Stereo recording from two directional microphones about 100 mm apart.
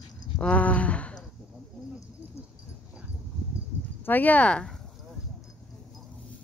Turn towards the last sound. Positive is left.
turn(degrees=10)  # may be behind; listen again after turning